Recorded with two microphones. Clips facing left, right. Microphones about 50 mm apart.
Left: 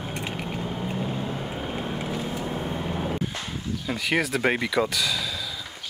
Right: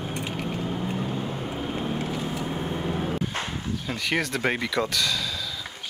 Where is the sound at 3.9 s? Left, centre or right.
Centre.